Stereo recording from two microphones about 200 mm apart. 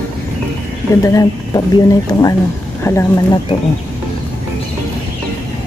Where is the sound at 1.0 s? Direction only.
15° left (ahead or behind).